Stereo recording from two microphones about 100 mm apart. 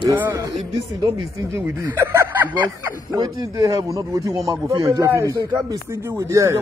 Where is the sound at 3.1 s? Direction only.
40° right (ahead or behind).